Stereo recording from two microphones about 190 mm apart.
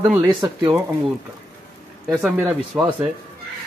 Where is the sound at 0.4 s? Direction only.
25° right (ahead or behind).